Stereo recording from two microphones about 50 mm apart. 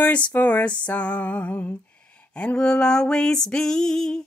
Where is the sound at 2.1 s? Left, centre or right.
Left.